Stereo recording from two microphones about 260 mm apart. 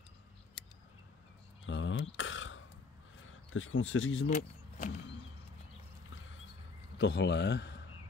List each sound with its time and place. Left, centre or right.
1.7 s throat clearing: left
3.5 s speech: left
4.3 s speech: left
7.0 s a man's voice: left